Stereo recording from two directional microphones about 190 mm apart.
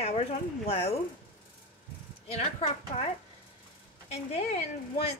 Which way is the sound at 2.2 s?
35° left (ahead or behind).